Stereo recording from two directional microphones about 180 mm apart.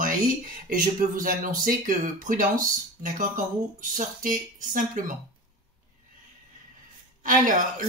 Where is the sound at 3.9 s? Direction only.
45° right (ahead or behind).